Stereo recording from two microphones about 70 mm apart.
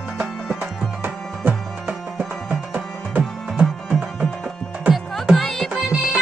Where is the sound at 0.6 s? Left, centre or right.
Right.